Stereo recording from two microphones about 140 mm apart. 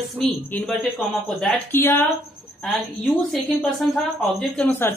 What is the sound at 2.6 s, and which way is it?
A woman's voice, centre (ahead or behind).